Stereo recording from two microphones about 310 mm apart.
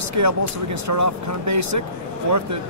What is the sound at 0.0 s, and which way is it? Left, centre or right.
Speech, right.